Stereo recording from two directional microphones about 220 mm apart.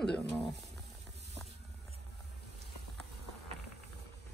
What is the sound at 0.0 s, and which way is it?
Speech, centre (ahead or behind).